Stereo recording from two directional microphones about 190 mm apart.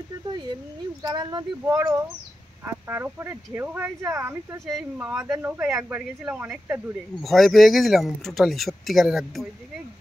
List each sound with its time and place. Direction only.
1.0 s speech: 20° right (ahead or behind)
4.6 s speech: centre (ahead or behind)
5.0 s speech: 10° right (ahead or behind)